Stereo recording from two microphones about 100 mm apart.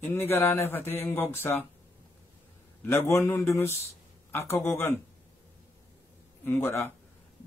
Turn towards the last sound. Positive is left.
turn(degrees=25)  # may be behind; listen again after turning